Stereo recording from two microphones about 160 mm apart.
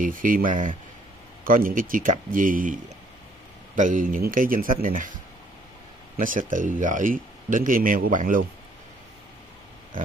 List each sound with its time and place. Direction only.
0.0 s speech: 60° right (ahead or behind)
6.1 s speech: 55° right (ahead or behind)